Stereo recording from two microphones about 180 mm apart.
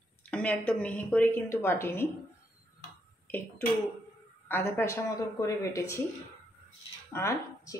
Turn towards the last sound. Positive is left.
turn(degrees=15)  # may be behind; listen again after turning